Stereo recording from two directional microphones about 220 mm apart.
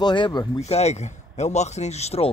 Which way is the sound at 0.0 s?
20° left (ahead or behind).